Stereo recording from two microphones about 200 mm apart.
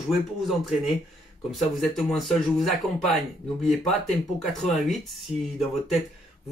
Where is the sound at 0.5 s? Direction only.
Centre (ahead or behind).